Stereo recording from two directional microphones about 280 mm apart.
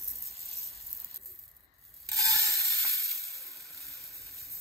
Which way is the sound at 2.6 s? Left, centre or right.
Centre.